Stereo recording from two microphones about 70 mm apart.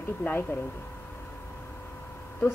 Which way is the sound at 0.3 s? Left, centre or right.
Left.